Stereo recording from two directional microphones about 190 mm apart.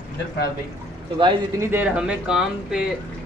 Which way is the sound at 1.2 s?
25° right (ahead or behind).